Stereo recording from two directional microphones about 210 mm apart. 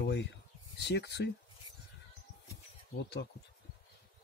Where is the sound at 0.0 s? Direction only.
55° left (ahead or behind).